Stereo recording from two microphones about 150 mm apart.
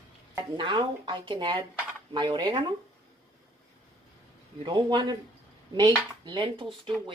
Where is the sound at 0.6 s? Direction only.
35° right (ahead or behind).